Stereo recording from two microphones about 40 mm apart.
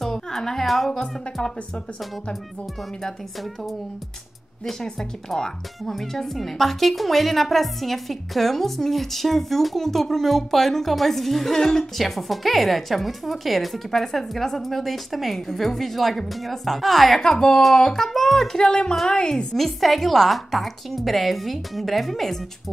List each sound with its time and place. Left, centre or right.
0.0 s a sound: centre
0.7 s speech: centre
5.3 s speech: centre
12.0 s a woman's voice: centre
19.5 s speech: centre